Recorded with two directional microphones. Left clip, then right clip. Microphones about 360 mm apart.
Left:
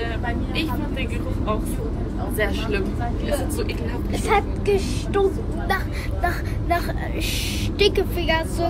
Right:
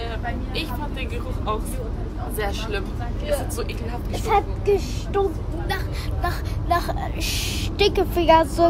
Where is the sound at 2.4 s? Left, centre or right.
Centre.